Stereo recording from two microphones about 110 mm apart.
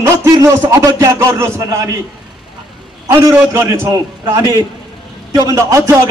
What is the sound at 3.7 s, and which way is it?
A man's voice, 25° right (ahead or behind).